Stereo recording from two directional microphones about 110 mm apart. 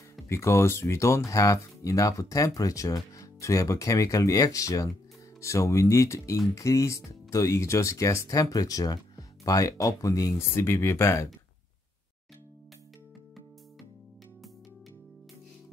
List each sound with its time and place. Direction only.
0.3 s speech: 25° left (ahead or behind)